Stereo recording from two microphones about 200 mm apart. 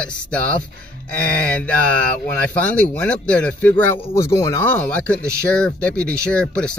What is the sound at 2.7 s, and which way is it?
Speech, 5° left (ahead or behind).